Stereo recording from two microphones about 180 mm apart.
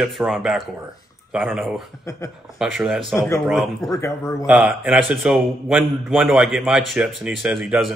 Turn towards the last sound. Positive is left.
turn(degrees=0)  # may be behind; listen again after turning